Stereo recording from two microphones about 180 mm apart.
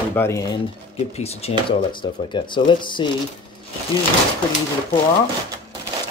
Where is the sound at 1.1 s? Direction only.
35° left (ahead or behind).